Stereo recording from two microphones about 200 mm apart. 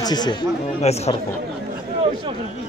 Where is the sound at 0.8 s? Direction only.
30° left (ahead or behind).